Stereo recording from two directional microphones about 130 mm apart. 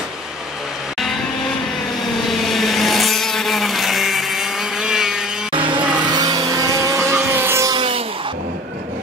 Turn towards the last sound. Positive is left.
turn(degrees=-40)  # may be behind; listen again after turning